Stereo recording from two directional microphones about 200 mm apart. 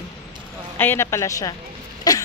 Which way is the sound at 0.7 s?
10° left (ahead or behind).